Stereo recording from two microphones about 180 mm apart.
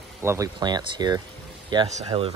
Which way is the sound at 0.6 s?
25° right (ahead or behind).